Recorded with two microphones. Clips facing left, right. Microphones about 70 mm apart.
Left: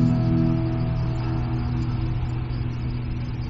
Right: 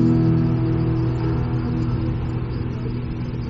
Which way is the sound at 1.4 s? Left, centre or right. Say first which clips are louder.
Right 4 dB; centre.